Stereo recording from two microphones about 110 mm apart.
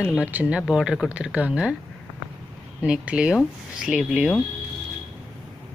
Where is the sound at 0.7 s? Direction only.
5° right (ahead or behind).